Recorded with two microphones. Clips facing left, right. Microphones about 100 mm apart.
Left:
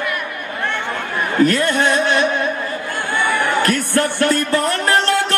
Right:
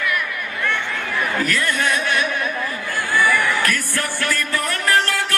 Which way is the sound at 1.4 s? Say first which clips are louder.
Left 10 dB; 25° left (ahead or behind).